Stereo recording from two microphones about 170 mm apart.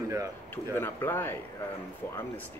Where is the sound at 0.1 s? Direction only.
20° right (ahead or behind).